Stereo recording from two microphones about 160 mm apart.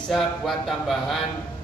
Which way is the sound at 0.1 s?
Centre (ahead or behind).